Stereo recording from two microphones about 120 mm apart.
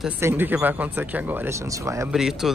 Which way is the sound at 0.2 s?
20° right (ahead or behind).